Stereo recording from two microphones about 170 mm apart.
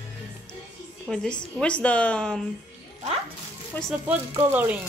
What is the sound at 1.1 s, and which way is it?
A woman's voice, 5° left (ahead or behind).